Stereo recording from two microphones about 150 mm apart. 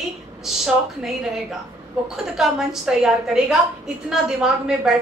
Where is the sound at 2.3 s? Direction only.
5° right (ahead or behind).